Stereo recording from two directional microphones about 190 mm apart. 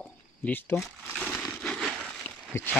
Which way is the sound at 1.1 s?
Centre (ahead or behind).